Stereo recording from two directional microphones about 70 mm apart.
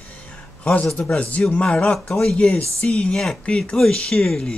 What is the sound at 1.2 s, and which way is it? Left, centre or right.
Speech, centre.